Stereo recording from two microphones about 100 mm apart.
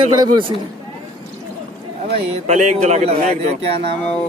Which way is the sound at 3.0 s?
90° right.